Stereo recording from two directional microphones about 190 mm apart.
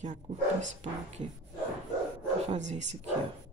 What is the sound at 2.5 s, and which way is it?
Speech, 35° right (ahead or behind).